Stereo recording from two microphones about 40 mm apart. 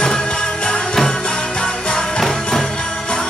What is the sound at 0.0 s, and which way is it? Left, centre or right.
Music, left.